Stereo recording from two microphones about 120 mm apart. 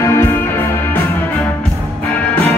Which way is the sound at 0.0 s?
25° left (ahead or behind).